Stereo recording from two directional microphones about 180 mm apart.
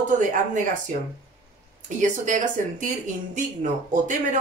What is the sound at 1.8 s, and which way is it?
Speech, 45° right (ahead or behind).